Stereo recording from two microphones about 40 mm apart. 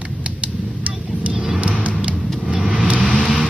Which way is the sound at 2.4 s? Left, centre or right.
Centre.